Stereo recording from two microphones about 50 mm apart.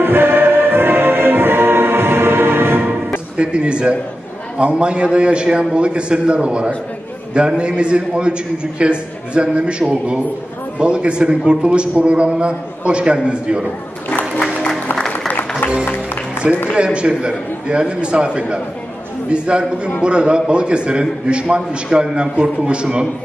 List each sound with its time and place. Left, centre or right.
0.0 s music: right
3.3 s a man's voice: right
14.0 s music: left
16.7 s a man's voice: centre